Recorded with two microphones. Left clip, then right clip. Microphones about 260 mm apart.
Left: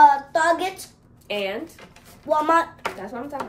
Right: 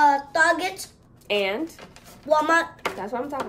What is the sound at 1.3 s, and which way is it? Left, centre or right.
Speech, right.